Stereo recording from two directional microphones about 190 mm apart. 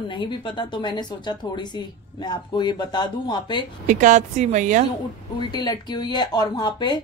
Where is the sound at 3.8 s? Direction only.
40° right (ahead or behind).